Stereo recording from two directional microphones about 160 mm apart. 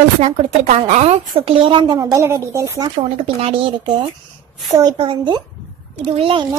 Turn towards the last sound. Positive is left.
turn(degrees=-35)  # may be behind; listen again after turning